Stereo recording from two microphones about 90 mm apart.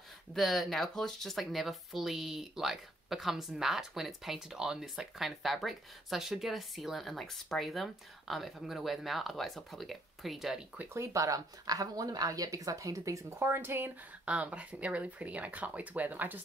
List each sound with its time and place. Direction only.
0.3 s speech: centre (ahead or behind)
10.9 s speech: 35° right (ahead or behind); by 16.3 s 20° right (ahead or behind)